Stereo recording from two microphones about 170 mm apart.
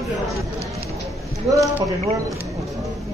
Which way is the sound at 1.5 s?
20° right (ahead or behind).